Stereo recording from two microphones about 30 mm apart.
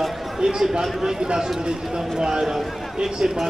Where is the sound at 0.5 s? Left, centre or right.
Right.